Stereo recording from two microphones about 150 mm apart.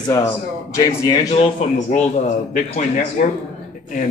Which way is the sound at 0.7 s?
20° left (ahead or behind).